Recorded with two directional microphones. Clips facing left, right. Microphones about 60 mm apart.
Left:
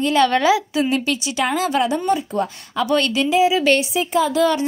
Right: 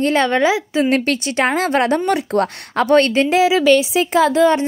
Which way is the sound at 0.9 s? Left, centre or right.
Right.